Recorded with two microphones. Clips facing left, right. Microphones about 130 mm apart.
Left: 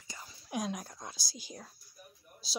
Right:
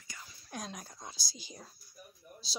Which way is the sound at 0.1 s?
30° left (ahead or behind).